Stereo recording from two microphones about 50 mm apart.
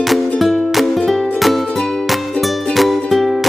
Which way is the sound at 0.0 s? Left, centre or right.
Centre.